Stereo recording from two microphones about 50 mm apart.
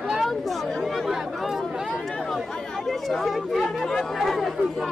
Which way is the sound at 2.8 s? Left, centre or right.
Centre.